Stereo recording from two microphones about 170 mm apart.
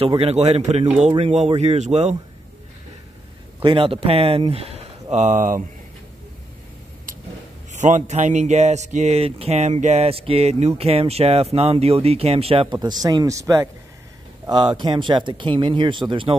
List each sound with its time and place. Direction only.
0.0 s speech: 35° right (ahead or behind)
3.6 s speech: 30° right (ahead or behind)
5.1 s speech: 45° right (ahead or behind)
7.7 s speech: 45° right (ahead or behind); by 16.3 s 30° right (ahead or behind)